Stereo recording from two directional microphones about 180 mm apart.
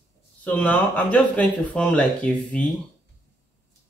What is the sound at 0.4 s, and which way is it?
Speech, 10° left (ahead or behind).